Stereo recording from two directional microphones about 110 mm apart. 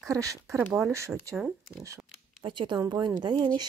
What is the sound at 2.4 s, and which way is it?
A woman's voice, 45° right (ahead or behind).